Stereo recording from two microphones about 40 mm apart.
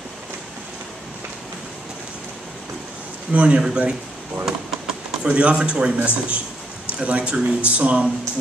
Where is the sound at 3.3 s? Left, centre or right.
Right.